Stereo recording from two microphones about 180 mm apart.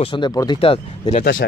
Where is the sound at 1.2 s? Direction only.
90° left.